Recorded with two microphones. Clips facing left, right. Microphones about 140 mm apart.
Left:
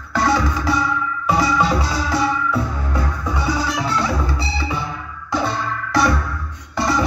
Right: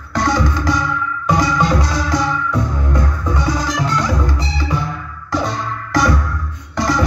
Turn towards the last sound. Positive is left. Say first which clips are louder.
# right 2 dB
turn(degrees=5)  # may be behind; listen again after turning